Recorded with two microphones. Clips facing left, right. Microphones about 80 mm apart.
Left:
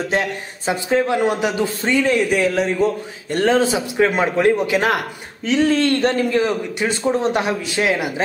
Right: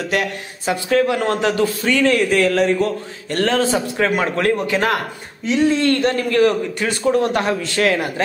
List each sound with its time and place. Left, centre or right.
0.1 s a man's voice: left
5.4 s speech: left
5.9 s a man's voice: left